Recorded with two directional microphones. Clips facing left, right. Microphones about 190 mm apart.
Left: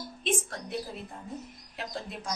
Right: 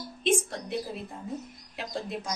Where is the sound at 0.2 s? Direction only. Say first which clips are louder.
Right 5 dB; centre (ahead or behind).